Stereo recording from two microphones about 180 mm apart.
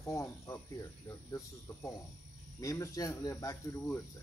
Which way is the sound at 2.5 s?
20° left (ahead or behind).